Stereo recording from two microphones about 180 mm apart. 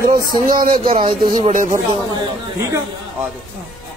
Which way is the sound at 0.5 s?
50° right (ahead or behind).